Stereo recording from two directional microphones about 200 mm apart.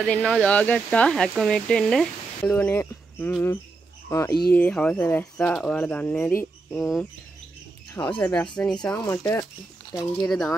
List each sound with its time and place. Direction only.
0.0 s speech: 5° left (ahead or behind)
7.9 s speech: 25° left (ahead or behind)
8.2 s speech: 5° left (ahead or behind)
9.9 s speech: centre (ahead or behind)